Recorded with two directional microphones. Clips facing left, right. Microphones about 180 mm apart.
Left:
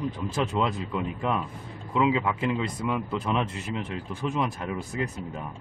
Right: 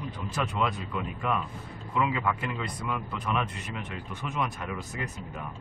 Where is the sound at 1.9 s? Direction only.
25° left (ahead or behind).